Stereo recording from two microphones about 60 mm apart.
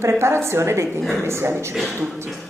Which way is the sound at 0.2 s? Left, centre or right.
Right.